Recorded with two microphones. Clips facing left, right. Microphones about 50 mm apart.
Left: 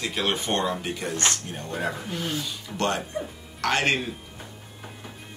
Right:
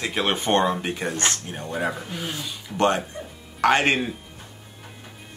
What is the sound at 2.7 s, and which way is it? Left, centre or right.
Speech, right.